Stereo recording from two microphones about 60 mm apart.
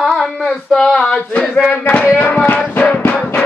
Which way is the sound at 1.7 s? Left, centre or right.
Left.